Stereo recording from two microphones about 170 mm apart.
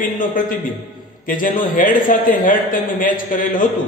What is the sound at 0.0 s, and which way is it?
A man's voice, 55° left (ahead or behind).